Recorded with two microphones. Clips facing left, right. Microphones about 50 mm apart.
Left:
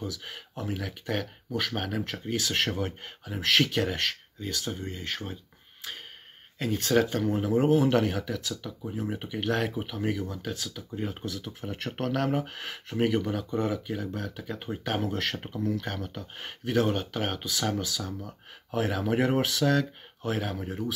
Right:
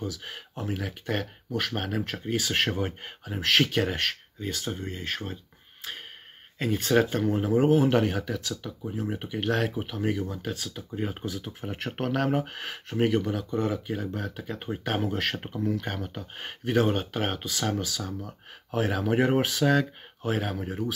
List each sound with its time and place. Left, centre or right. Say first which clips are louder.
0.0 s speech: right 2 dB; centre
3.3 s speech: right 1 dB; centre
6.6 s speech: right 1 dB; centre
7.2 s speech: right 2 dB; centre
10.7 s speech: right 2 dB; right; by 13.5 s centre
13.7 s speech: right 1 dB; centre
19.6 s speech: right 2 dB; right
20.6 s speech: right 2 dB; centre